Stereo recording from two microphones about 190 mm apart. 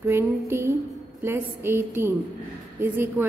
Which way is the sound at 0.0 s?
15° right (ahead or behind).